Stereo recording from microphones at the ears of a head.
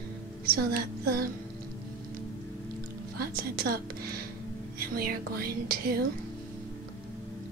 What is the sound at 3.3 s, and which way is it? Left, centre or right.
Speech, right.